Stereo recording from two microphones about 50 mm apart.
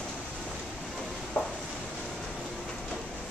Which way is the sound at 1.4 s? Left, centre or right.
Left.